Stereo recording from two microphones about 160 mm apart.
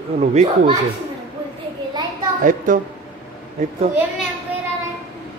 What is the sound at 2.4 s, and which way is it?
Speech, 55° right (ahead or behind).